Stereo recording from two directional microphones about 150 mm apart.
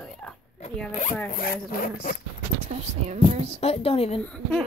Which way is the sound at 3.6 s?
40° left (ahead or behind).